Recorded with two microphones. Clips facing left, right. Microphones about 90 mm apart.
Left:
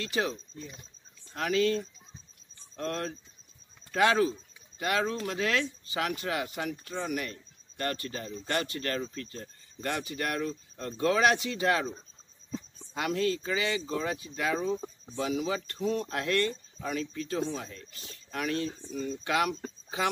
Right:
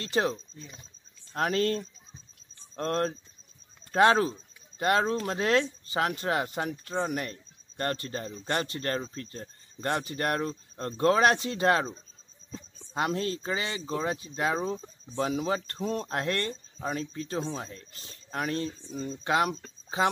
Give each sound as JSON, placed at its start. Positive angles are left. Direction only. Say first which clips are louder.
{"t": 0.0, "sound": "speech", "louder": "right 3 dB", "side_deg": -35}
{"t": 12.4, "sound": "a sound", "louder": "left 5 dB", "side_deg": 5}
{"t": 12.9, "sound": "speech", "louder": "even", "side_deg": -35}